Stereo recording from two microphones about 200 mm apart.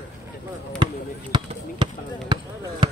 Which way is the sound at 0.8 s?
25° right (ahead or behind).